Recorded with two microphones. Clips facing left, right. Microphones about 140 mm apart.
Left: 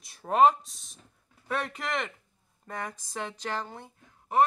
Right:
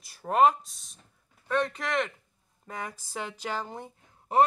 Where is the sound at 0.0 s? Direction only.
Centre (ahead or behind).